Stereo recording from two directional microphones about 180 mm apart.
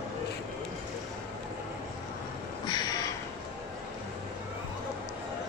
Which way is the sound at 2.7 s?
20° left (ahead or behind).